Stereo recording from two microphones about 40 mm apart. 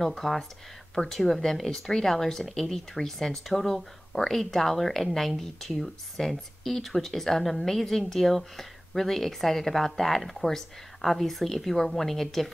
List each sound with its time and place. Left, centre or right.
0.0 s speech: centre